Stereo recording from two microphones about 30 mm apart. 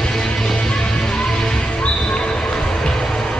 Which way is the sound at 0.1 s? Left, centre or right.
Centre.